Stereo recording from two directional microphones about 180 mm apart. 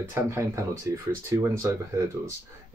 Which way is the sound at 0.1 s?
15° right (ahead or behind).